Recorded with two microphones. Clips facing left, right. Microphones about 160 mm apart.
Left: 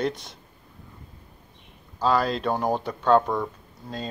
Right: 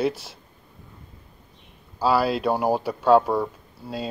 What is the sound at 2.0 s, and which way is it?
Speech, 10° right (ahead or behind).